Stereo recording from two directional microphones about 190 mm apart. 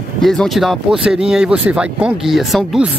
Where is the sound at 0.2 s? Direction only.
Centre (ahead or behind).